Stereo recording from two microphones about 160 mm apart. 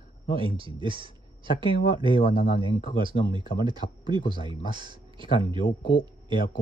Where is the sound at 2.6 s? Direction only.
30° right (ahead or behind).